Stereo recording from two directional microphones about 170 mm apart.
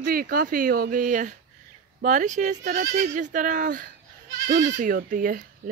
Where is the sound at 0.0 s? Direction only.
60° right (ahead or behind).